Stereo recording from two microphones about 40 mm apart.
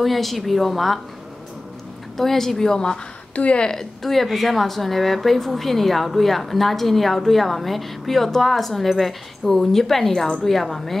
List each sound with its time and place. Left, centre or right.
0.0 s speech: centre
2.1 s a woman's voice: centre
3.3 s a woman's voice: left
3.6 s a woman's voice: centre